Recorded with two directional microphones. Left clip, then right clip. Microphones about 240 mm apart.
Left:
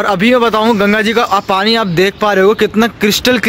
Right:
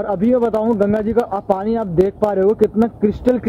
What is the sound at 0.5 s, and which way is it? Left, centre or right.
Speech, left.